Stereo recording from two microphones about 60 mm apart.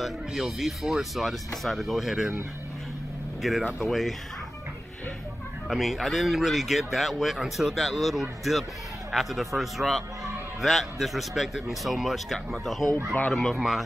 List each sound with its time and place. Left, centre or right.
0.0 s speech: centre
3.4 s speech: centre
5.7 s speech: centre